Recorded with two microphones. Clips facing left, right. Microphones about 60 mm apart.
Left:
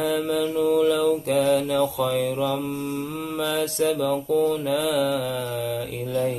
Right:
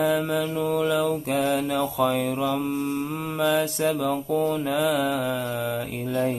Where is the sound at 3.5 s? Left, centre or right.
Centre.